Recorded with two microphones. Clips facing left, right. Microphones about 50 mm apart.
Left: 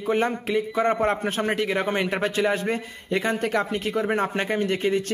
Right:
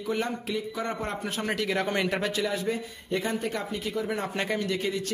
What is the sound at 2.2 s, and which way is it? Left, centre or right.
A man's voice, left.